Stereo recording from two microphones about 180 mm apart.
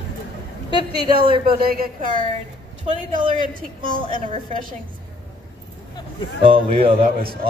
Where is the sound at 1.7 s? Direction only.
50° right (ahead or behind).